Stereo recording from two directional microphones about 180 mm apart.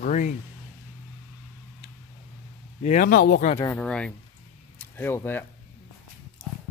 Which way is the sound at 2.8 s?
40° left (ahead or behind).